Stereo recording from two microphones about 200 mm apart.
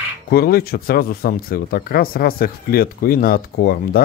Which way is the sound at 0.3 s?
50° left (ahead or behind).